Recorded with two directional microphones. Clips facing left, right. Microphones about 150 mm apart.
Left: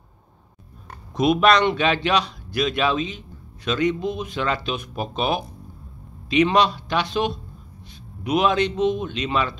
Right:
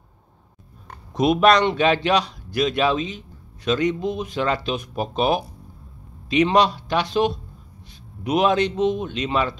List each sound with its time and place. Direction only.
1.1 s a man's voice: 40° right (ahead or behind)